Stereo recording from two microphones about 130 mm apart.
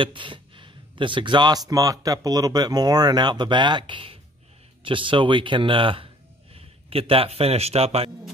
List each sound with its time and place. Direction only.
0.0 s speech: 40° right (ahead or behind)